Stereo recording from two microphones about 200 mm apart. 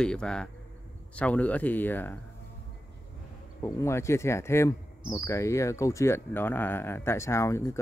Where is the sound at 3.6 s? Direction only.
15° left (ahead or behind).